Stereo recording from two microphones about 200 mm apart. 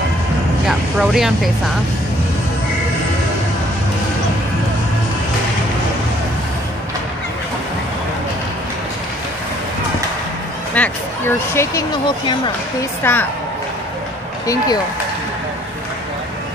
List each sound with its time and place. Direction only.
0.7 s speech: centre (ahead or behind)
10.7 s speech: 10° left (ahead or behind)
13.0 s a woman's voice: 10° left (ahead or behind)
14.4 s speech: 15° left (ahead or behind)